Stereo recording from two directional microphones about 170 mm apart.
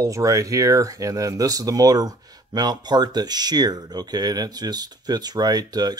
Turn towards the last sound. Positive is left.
turn(degrees=-25)  # may be behind; listen again after turning